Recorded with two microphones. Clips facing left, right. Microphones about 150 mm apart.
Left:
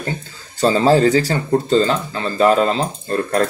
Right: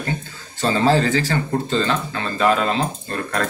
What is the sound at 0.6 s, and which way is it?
Speech, 35° left (ahead or behind).